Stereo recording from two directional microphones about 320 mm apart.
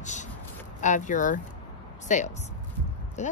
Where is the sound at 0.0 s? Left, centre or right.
Left.